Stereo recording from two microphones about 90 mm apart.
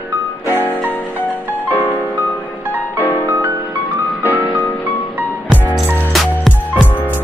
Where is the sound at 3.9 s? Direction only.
20° right (ahead or behind).